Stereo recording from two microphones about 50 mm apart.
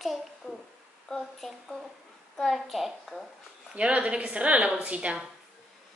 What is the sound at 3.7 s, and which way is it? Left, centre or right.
A woman's voice, right.